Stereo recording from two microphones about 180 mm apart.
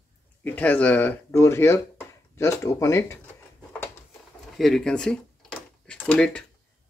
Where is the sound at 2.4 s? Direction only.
15° left (ahead or behind).